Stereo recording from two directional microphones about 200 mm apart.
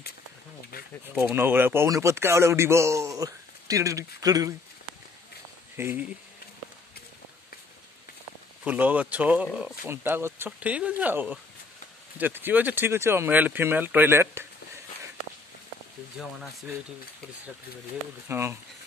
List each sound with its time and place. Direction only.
1.1 s speech: 10° right (ahead or behind)
5.8 s speech: 10° right (ahead or behind)
8.6 s speech: 10° right (ahead or behind)
18.3 s speech: 10° right (ahead or behind)